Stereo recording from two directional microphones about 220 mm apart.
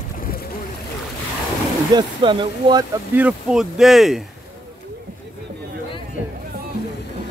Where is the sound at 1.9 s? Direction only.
20° right (ahead or behind).